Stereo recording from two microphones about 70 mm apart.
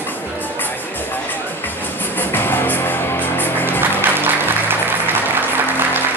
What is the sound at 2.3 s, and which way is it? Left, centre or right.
Music, left.